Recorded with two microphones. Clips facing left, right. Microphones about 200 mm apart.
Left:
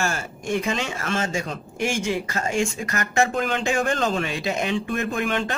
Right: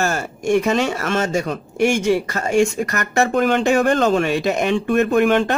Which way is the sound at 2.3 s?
40° right (ahead or behind).